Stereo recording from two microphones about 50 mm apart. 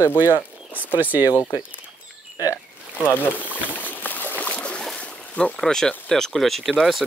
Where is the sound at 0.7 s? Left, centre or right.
Right.